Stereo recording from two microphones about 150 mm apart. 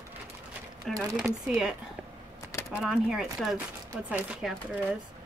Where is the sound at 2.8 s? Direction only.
5° right (ahead or behind).